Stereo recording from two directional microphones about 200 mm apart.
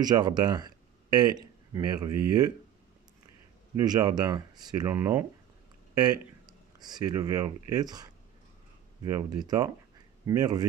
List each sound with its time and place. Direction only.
0.0 s speech: 20° right (ahead or behind)
3.8 s speech: 20° right (ahead or behind)
6.8 s speech: 20° right (ahead or behind)